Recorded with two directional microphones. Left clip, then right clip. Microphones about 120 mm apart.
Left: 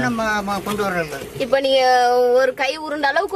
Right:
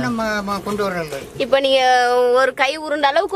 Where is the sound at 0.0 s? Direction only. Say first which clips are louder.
Left 1 dB; 20° right (ahead or behind).